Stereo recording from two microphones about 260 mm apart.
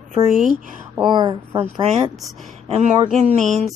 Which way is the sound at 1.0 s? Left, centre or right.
Centre.